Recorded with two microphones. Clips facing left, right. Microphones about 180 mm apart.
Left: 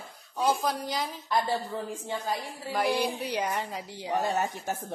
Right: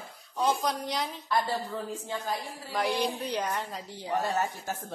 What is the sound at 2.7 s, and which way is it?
A woman's voice, 5° left (ahead or behind).